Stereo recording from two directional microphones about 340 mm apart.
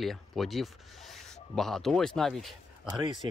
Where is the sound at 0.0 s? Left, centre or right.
Centre.